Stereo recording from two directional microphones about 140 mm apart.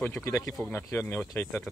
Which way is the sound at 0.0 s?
15° left (ahead or behind).